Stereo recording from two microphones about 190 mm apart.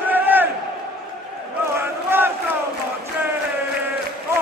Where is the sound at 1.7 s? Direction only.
10° right (ahead or behind).